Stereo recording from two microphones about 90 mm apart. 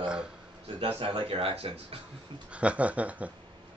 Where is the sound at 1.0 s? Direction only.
80° right.